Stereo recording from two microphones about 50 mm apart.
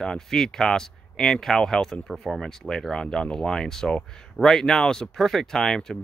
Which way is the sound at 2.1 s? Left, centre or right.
Centre.